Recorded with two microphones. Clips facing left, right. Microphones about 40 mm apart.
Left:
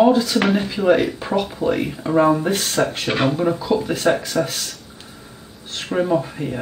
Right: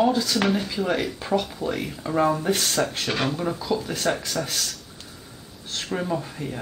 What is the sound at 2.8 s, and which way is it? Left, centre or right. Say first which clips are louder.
Speech: left 5 dB; left.